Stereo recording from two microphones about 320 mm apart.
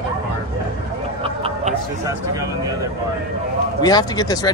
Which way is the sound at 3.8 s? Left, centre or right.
Centre.